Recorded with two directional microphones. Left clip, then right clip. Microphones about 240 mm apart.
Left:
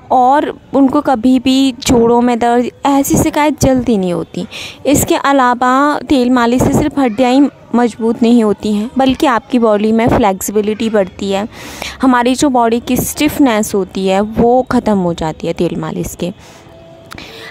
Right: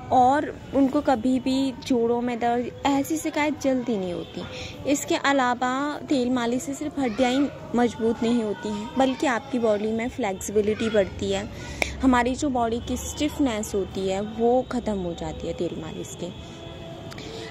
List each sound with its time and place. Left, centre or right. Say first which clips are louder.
0.1 s speech: left 10 dB; left